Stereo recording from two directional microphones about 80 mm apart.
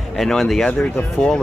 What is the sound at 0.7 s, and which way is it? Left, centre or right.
Speech, centre.